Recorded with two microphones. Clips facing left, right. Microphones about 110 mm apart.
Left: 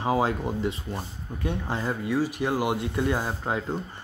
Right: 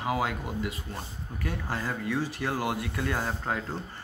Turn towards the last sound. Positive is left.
turn(degrees=15)  # may be behind; listen again after turning